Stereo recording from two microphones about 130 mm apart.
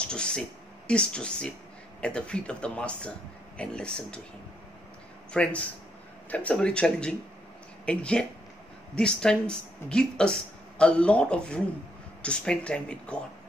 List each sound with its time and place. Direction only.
0.0 s speech: 5° left (ahead or behind)
5.3 s speech: 10° left (ahead or behind)